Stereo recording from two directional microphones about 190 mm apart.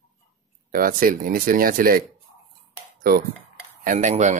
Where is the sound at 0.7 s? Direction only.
50° right (ahead or behind).